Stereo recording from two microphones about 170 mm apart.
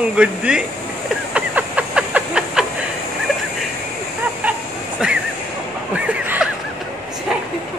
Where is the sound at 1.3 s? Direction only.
5° right (ahead or behind).